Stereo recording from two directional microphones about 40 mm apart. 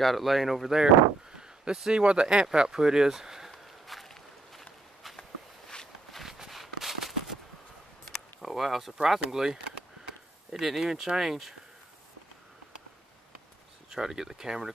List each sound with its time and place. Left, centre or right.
0.0 s speech: centre
0.7 s speech: centre
3.8 s walk: centre
6.2 s walk: centre
6.5 s a sound: centre
8.4 s speech: centre
13.8 s speech: centre